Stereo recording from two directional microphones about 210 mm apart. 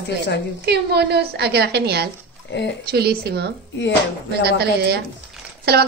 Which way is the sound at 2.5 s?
55° left (ahead or behind).